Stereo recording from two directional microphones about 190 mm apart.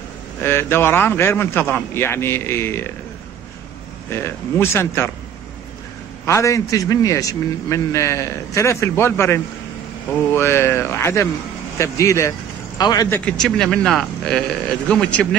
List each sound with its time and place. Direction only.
0.4 s a man's voice: 10° left (ahead or behind)
4.1 s a man's voice: 15° left (ahead or behind)
6.2 s a man's voice: 15° left (ahead or behind)
13.2 s speech: 5° left (ahead or behind)